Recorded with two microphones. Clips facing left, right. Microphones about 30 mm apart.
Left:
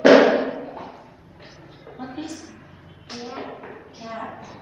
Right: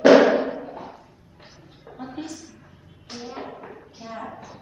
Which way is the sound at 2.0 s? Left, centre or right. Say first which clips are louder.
Left 1 dB; centre.